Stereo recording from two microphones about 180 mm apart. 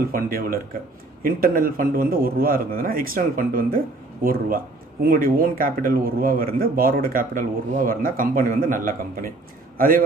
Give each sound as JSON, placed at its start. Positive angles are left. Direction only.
{"t": 0.1, "sound": "a man's voice", "side_deg": -55}